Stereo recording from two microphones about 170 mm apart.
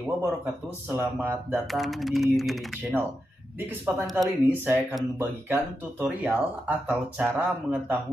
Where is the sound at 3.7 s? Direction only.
10° right (ahead or behind).